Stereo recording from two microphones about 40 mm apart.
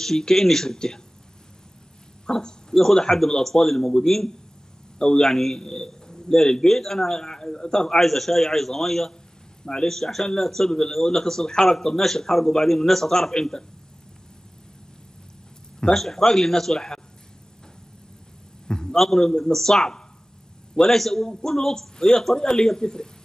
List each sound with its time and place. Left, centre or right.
0.0 s a man's voice: centre
2.2 s a man's voice: centre
15.9 s a man's voice: centre
18.7 s a sound: centre
18.9 s a man's voice: centre